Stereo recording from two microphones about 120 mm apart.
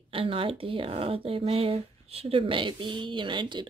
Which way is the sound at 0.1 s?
50° right (ahead or behind).